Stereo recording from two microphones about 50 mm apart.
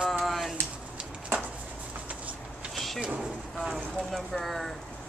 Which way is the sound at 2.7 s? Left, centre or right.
Centre.